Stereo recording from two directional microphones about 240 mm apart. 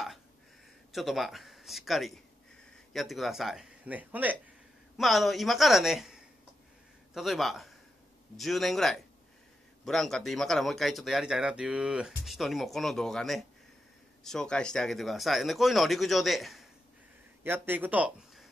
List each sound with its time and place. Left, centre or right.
0.9 s speech: centre